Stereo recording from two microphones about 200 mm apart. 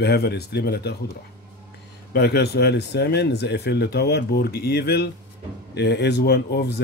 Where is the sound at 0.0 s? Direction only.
55° left (ahead or behind).